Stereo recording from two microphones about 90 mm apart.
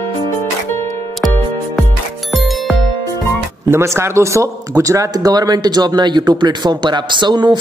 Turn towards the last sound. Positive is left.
turn(degrees=-55)  # may be behind; listen again after turning